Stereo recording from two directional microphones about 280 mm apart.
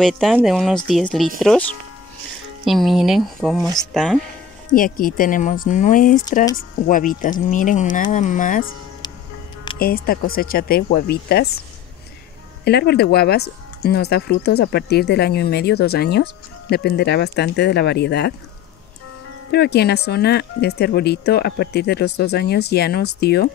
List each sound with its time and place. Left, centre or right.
0.0 s speech: centre
4.7 s speech: left
9.8 s speech: left
12.6 s speech: left
19.5 s speech: left